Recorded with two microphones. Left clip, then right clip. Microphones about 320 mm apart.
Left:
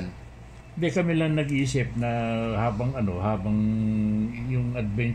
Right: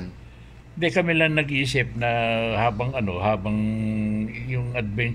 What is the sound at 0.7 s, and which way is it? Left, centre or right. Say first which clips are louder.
Speech: right 5 dB; right.